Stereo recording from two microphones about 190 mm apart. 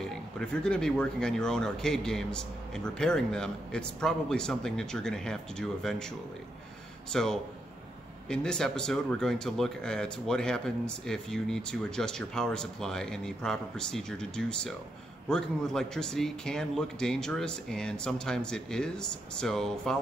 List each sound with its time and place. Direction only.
0.1 s speech: 5° left (ahead or behind)